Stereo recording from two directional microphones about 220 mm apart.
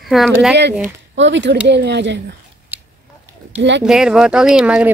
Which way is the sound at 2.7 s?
5° right (ahead or behind).